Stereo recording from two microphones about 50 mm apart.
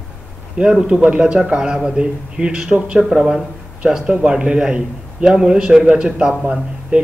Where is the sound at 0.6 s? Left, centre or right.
Centre.